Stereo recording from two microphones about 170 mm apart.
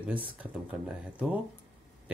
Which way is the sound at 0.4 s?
10° right (ahead or behind).